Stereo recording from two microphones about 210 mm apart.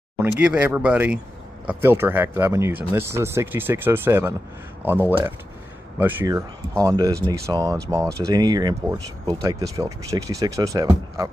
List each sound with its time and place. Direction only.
0.2 s speech: 5° right (ahead or behind)